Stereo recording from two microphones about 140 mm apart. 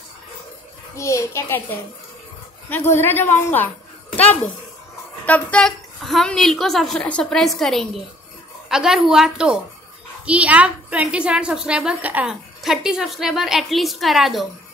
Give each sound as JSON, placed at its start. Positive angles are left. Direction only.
{"t": 0.9, "sound": "a child's voice", "side_deg": 20}